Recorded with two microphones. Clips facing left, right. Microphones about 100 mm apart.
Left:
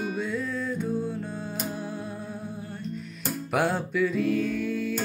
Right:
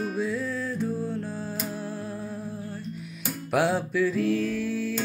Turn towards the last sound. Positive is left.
turn(degrees=0)  # may be behind; listen again after turning